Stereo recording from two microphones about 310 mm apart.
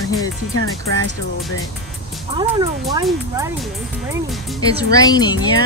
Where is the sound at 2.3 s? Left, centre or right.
Centre.